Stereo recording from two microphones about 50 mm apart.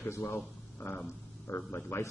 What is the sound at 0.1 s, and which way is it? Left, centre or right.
Speech, left.